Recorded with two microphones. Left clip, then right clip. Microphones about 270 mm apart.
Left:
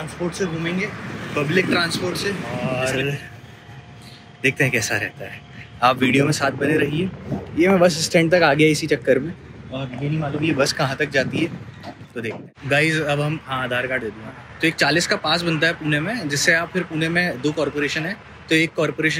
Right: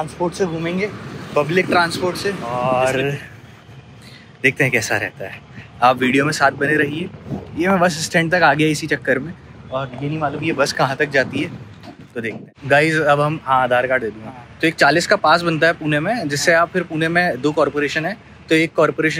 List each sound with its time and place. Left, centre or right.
0.4 s a man's voice: centre
4.4 s a man's voice: centre